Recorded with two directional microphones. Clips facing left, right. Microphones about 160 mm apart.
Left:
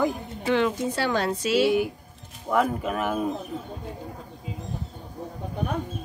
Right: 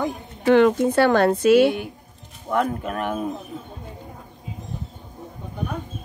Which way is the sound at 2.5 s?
Centre (ahead or behind).